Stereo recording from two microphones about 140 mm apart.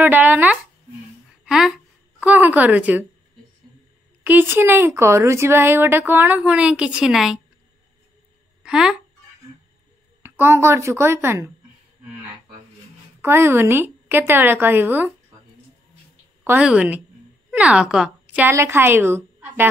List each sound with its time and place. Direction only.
0.0 s speech: 15° right (ahead or behind)
1.4 s a sound: 5° right (ahead or behind)
4.2 s speech: 15° right (ahead or behind)
8.6 s speech: 5° right (ahead or behind)
10.2 s speech: 15° right (ahead or behind)
13.2 s speech: 15° right (ahead or behind)
16.4 s a woman's voice: 5° right (ahead or behind)
18.5 s a woman's voice: 20° right (ahead or behind)